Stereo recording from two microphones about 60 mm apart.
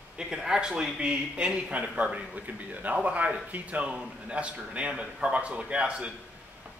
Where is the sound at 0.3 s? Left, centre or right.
Centre.